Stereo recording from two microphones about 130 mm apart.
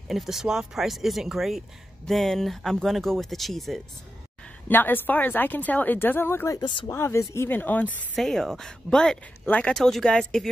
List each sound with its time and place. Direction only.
0.1 s speech: centre (ahead or behind)
4.6 s a woman's voice: 15° left (ahead or behind)
6.6 s speech: 40° left (ahead or behind)
6.9 s a woman's voice: 20° left (ahead or behind)
8.2 s speech: 5° left (ahead or behind)